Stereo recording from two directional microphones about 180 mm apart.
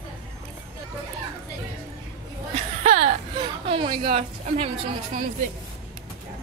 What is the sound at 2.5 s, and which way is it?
Chuckle, 35° right (ahead or behind).